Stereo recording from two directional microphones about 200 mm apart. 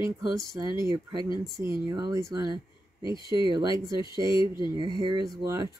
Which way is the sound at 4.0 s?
20° left (ahead or behind).